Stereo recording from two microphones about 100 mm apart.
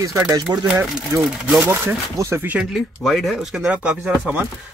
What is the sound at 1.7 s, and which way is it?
Speech, 30° right (ahead or behind).